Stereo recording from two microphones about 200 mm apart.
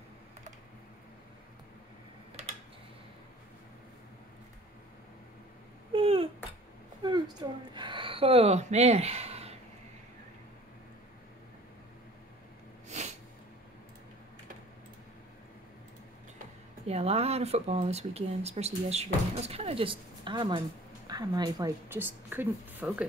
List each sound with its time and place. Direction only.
5.9 s a sound: 25° right (ahead or behind)
12.8 s snort: 35° right (ahead or behind)
16.8 s a woman's voice: 30° right (ahead or behind); by 23.0 s 10° right (ahead or behind)